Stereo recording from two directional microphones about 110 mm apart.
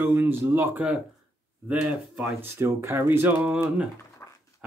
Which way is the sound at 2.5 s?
25° right (ahead or behind).